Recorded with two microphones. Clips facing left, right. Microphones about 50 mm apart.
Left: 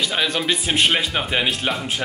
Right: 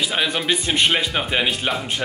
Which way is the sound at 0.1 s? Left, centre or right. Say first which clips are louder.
Even; centre.